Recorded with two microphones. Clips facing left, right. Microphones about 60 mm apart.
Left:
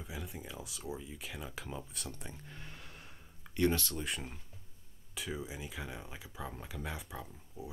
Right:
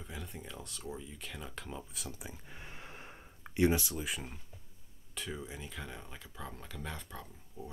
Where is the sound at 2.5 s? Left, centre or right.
Right.